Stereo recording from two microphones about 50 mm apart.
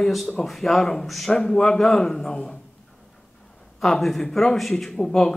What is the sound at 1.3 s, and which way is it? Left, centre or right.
Speech, centre.